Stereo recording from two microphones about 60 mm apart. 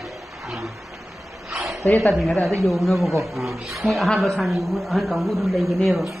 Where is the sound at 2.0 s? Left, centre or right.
Centre.